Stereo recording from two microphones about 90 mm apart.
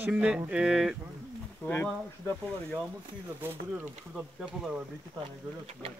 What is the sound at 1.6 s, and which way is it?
Speech, 20° left (ahead or behind).